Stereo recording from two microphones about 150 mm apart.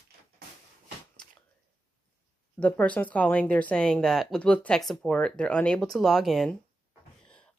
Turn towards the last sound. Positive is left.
turn(degrees=0)  # may be behind; listen again after turning